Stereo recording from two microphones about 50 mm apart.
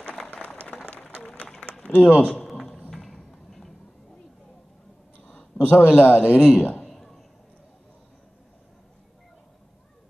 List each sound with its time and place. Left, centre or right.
0.3 s applause: left
1.2 s a sound: left
1.9 s speech: right
2.9 s clip-clop: centre
5.7 s a man's voice: left
6.2 s speech: centre
6.9 s a sound: centre